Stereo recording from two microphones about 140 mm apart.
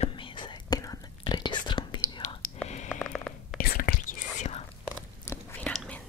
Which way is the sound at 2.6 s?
55° left (ahead or behind).